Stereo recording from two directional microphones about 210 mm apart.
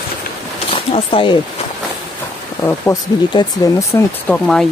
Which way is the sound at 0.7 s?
25° left (ahead or behind).